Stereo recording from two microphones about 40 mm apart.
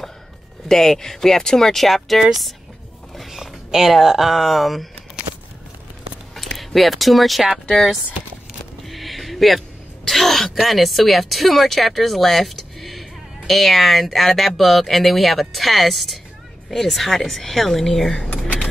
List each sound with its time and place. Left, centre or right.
0.7 s speech: centre
6.3 s speech: centre
8.8 s a sound: centre
10.0 s speech: centre